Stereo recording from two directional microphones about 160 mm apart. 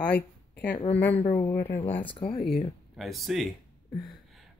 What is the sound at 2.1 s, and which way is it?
Speech, 35° left (ahead or behind).